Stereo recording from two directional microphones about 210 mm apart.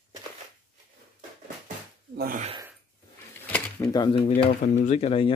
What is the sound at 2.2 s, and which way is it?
Gasp, 40° right (ahead or behind).